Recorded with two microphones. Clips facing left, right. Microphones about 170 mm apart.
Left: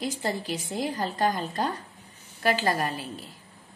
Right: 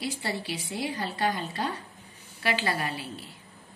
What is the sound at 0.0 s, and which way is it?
A woman's voice, 45° left (ahead or behind).